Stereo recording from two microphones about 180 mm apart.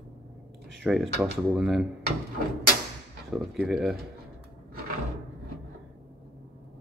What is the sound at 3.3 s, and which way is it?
Speech, centre (ahead or behind).